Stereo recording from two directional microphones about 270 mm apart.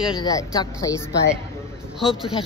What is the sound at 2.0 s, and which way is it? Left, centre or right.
Speech, centre.